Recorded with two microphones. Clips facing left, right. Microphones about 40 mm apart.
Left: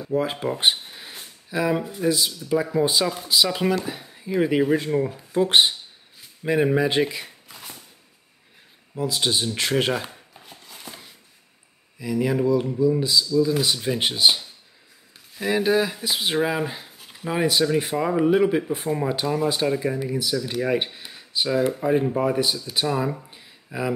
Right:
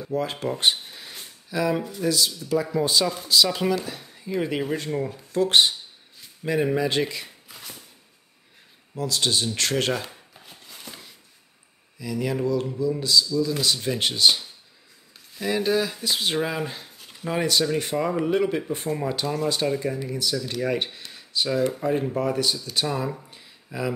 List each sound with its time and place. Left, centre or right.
0.1 s speech: centre
8.9 s speech: centre
10.4 s a sound: centre
12.0 s speech: centre